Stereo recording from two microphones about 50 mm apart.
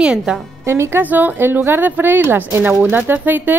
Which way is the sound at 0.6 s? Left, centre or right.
Right.